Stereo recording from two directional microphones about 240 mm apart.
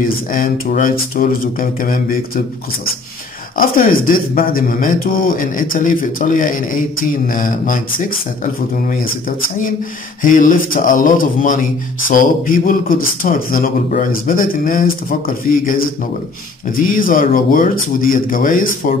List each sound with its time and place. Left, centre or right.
0.0 s speech: left
3.5 s speech: left
10.2 s speech: left